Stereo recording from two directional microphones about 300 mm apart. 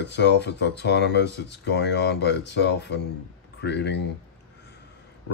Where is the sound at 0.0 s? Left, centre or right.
Left.